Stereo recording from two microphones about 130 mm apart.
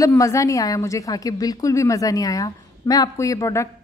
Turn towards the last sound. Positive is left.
turn(degrees=25)  # may be behind; listen again after turning